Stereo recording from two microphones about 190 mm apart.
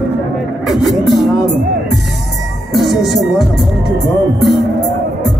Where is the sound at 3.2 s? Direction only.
Centre (ahead or behind).